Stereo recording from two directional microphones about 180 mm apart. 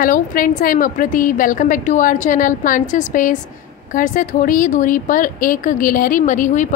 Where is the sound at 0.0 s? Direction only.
50° left (ahead or behind).